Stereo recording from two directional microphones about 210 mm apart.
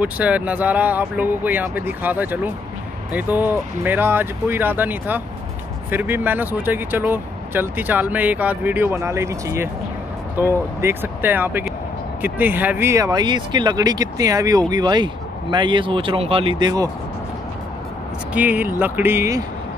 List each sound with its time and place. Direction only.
0.0 s speech: 5° right (ahead or behind)
18.3 s speech: 10° right (ahead or behind)